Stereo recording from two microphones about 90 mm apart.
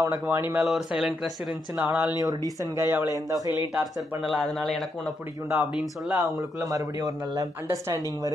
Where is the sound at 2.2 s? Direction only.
40° right (ahead or behind).